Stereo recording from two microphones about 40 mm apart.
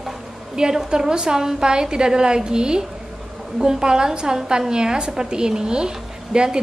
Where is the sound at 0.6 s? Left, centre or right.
Centre.